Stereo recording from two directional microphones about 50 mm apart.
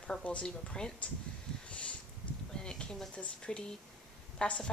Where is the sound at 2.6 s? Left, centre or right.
Centre.